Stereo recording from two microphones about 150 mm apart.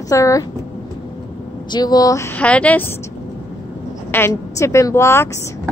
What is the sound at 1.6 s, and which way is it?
A woman's voice, 25° left (ahead or behind).